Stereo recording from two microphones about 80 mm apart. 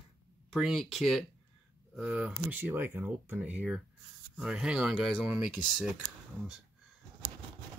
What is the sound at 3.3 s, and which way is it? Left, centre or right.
Speech, centre.